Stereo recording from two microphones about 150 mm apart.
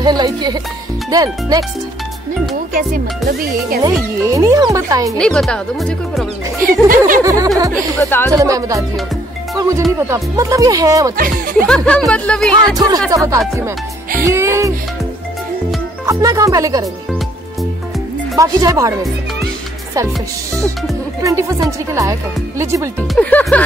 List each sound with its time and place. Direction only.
0.0 s speech: 30° right (ahead or behind)
2.7 s speech: 75° right (ahead or behind)
4.2 s speech: 20° right (ahead or behind)
5.1 s speech: 5° left (ahead or behind)
6.6 s speech: 70° right (ahead or behind)
7.2 s speech: 25° right (ahead or behind)
8.0 s speech: 15° left (ahead or behind)
8.3 s speech: 25° right (ahead or behind)
11.6 s speech: 5° left (ahead or behind)
12.7 s speech: 25° right (ahead or behind)
16.1 s speech: 25° right (ahead or behind)
18.3 s speech: 25° right (ahead or behind)
21.2 s speech: 20° right (ahead or behind)
23.1 s speech: 10° left (ahead or behind)